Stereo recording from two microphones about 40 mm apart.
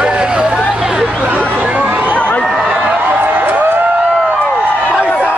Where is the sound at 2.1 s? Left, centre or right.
Left.